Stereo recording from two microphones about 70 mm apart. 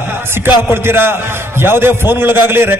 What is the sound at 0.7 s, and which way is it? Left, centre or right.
A man's voice, right.